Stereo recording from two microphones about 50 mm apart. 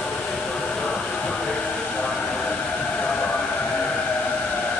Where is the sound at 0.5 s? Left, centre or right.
Centre.